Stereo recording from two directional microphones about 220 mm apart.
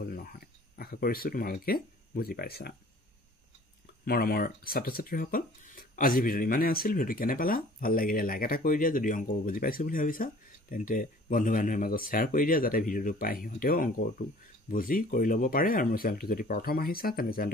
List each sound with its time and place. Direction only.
0.0 s speech: 40° left (ahead or behind)
4.0 s speech: 40° left (ahead or behind)